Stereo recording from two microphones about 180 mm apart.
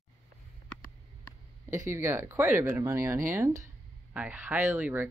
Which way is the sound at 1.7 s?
15° right (ahead or behind).